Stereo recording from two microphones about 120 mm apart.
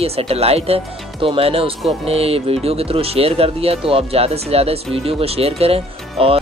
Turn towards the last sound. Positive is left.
turn(degrees=-55)  # may be behind; listen again after turning